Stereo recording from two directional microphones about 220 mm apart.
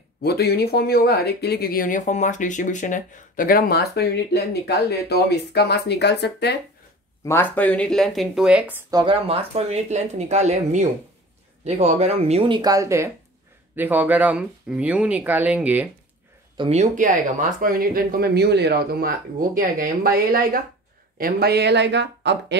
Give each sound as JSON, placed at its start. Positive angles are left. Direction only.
{"t": 0.2, "sound": "speech", "side_deg": 45}
{"t": 7.2, "sound": "speech", "side_deg": 10}
{"t": 8.9, "sound": "speech", "side_deg": -25}
{"t": 16.5, "sound": "speech", "side_deg": -30}